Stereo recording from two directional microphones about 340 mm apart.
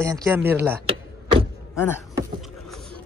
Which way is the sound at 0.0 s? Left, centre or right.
Centre.